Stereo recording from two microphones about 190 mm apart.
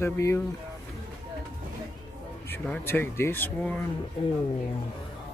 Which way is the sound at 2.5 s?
10° left (ahead or behind).